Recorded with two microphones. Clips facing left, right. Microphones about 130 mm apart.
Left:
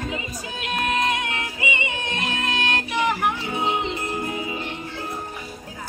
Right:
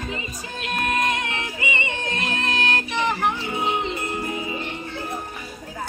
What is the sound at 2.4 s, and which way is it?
Music, 20° left (ahead or behind).